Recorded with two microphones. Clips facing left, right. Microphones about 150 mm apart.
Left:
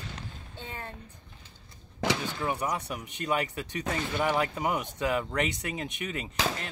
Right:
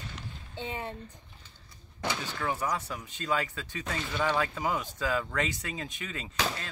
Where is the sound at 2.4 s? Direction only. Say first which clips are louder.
Left 1 dB; 20° left (ahead or behind).